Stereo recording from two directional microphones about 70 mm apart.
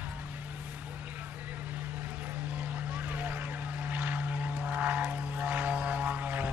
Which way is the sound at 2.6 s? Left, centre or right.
Right.